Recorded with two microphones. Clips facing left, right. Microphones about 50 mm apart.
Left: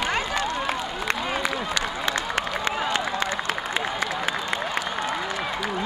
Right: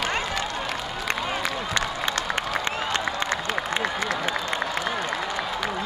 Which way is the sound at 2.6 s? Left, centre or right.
Centre.